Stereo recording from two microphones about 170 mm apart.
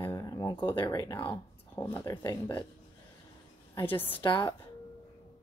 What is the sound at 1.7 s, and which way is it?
Speech, 10° left (ahead or behind).